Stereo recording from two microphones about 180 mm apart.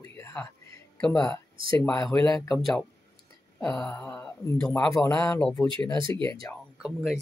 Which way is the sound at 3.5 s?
5° left (ahead or behind).